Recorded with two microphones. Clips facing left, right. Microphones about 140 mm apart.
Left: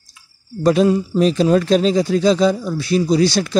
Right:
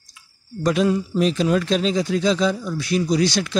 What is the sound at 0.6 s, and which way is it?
A man's voice, 30° left (ahead or behind).